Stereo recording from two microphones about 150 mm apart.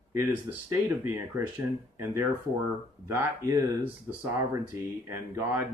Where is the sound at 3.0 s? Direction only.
20° right (ahead or behind).